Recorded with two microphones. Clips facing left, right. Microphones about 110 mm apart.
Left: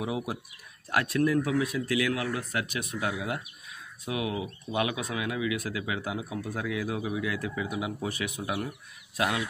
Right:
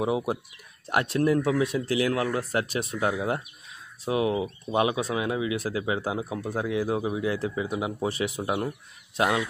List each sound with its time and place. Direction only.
0.0 s speech: 30° right (ahead or behind)